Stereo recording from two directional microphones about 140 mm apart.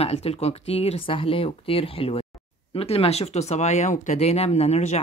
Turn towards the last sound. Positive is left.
turn(degrees=50)  # may be behind; listen again after turning